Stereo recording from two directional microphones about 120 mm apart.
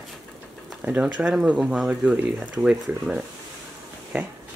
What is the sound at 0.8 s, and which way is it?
Speech, 10° right (ahead or behind).